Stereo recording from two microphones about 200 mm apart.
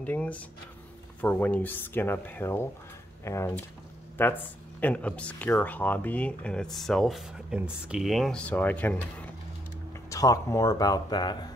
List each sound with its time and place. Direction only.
0.0 s speech: 10° left (ahead or behind)